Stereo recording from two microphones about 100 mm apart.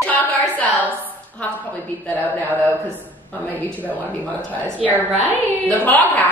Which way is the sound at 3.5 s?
15° right (ahead or behind).